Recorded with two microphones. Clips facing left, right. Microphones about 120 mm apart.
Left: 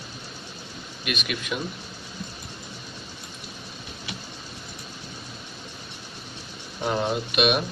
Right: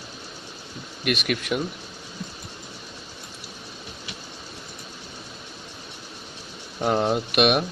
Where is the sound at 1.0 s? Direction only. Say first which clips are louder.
Right 5 dB; 60° right (ahead or behind).